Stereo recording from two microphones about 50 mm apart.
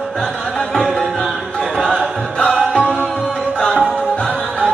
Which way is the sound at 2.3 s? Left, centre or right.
Centre.